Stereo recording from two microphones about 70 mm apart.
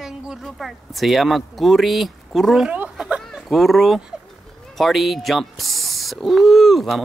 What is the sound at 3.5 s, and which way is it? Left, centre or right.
Speech, centre.